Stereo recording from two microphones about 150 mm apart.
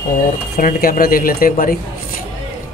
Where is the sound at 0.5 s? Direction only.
80° left.